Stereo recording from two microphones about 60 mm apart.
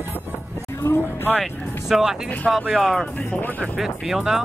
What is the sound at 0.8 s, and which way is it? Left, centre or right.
Vehicle, left.